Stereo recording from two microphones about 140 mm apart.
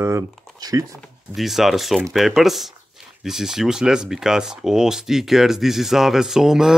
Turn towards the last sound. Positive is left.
turn(degrees=-5)  # may be behind; listen again after turning